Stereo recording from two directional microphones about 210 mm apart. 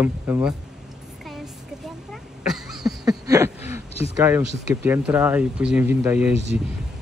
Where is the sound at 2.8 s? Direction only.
15° right (ahead or behind).